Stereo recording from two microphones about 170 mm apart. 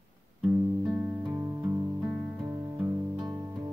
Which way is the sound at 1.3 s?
15° right (ahead or behind).